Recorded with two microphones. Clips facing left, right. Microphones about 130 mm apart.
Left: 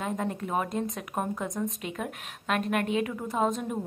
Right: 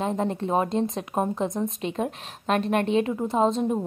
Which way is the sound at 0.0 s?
30° right (ahead or behind).